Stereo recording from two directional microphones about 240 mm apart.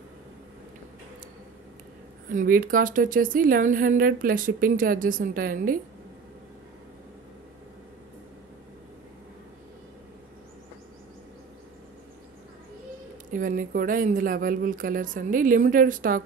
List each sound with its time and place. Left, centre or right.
2.2 s speech: right
13.3 s speech: right